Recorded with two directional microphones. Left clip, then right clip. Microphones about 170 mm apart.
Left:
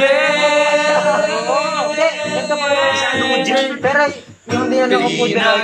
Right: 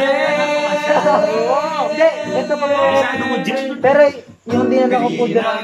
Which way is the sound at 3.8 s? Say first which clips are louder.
Right 7 dB; 30° right (ahead or behind).